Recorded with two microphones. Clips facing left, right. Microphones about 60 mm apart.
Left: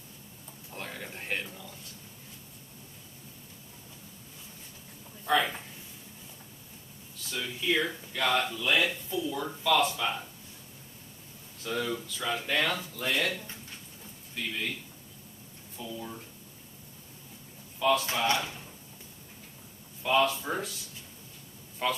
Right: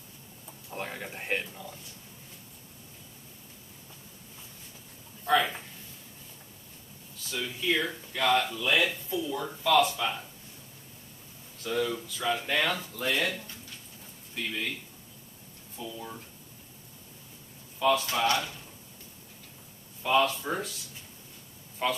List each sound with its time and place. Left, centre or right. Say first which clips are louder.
0.7 s speech: right 3 dB; centre
5.2 s speech: right 1 dB; centre
7.2 s speech: right 1 dB; centre
11.6 s speech: right 2 dB; centre
14.3 s a man's voice: right 1 dB; centre
15.8 s speech: even; centre
17.7 s speech: right 1 dB; centre
18.2 s speech: right 1 dB; left
20.0 s speech: right 1 dB; centre
21.8 s speech: right 1 dB; centre